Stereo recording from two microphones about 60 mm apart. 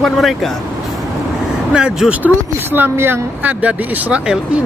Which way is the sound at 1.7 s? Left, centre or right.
Centre.